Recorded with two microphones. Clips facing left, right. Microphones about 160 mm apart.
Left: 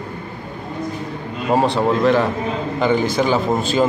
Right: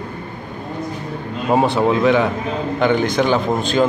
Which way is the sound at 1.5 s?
Centre (ahead or behind).